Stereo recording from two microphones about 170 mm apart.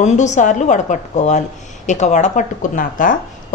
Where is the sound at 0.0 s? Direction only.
45° left (ahead or behind).